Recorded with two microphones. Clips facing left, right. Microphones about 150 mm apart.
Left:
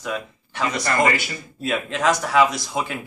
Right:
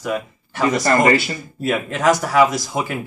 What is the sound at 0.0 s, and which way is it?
Speech, 5° right (ahead or behind).